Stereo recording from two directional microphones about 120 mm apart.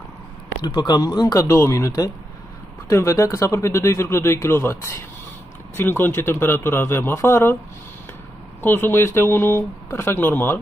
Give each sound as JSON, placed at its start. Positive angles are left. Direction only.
{"t": 0.6, "sound": "speech", "side_deg": 40}
{"t": 8.5, "sound": "speech", "side_deg": 20}